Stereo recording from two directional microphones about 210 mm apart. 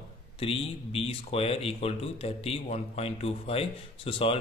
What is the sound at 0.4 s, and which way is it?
Speech, 25° left (ahead or behind).